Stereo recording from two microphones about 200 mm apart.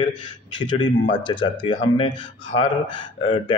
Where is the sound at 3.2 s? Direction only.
25° left (ahead or behind).